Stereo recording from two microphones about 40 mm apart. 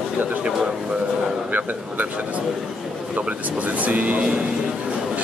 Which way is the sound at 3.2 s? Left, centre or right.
Right.